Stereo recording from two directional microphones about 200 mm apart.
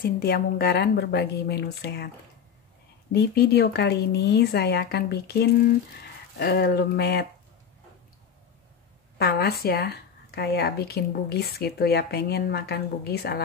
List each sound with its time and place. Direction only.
0.0 s speech: 50° left (ahead or behind)
3.1 s speech: 55° left (ahead or behind)
9.2 s speech: 50° left (ahead or behind)